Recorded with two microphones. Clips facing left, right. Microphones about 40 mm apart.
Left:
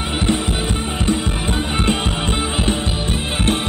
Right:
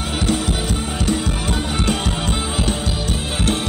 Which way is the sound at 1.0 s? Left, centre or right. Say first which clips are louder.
Left 1 dB; left.